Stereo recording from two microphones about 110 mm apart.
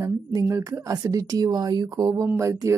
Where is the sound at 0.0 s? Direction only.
30° right (ahead or behind).